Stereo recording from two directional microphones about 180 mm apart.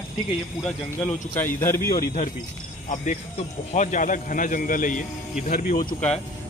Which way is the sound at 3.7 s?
45° left (ahead or behind).